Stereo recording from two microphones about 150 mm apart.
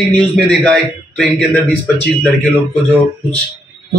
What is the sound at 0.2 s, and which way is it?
A man's voice, 5° left (ahead or behind).